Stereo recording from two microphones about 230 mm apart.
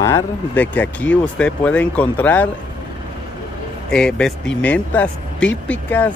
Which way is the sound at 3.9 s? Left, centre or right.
Centre.